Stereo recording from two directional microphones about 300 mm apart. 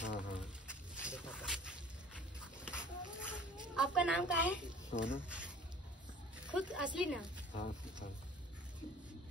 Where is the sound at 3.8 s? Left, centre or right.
Centre.